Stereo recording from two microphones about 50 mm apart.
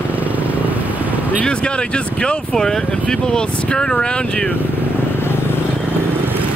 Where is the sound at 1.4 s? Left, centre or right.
Centre.